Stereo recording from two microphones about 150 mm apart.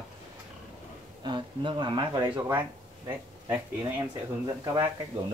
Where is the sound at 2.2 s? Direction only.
15° right (ahead or behind).